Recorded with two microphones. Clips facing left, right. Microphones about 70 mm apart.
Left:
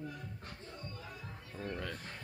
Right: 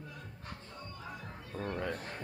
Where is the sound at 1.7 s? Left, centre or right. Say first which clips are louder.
Right 6 dB; right.